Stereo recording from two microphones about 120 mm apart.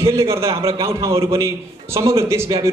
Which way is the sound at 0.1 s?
25° right (ahead or behind).